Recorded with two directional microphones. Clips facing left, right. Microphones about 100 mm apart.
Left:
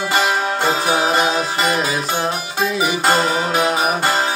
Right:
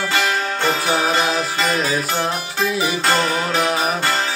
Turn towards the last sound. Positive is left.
turn(degrees=20)  # may be behind; listen again after turning